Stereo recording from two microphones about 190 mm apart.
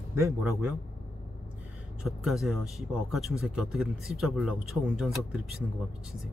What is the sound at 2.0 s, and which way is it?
Speech, centre (ahead or behind).